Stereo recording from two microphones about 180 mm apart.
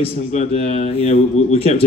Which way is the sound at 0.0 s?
40° left (ahead or behind).